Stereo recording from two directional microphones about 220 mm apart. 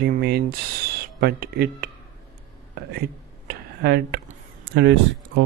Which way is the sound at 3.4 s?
45° right (ahead or behind).